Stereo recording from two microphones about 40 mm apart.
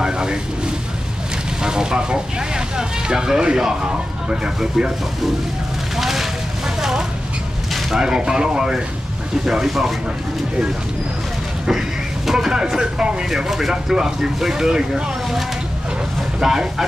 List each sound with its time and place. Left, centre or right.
0.0 s a sound: centre
1.6 s vehicle: centre
4.6 s speech: centre
5.9 s vehicle: centre
6.8 s a sound: centre
7.9 s speech: centre
9.7 s speech: centre
12.3 s speech: centre
13.9 s speech: centre
16.3 s speech: centre